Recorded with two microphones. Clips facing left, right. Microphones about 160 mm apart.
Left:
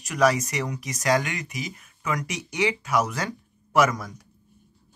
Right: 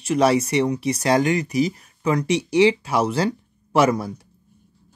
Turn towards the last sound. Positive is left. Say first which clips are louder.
# right 4 dB
turn(degrees=-30)  # may be behind; listen again after turning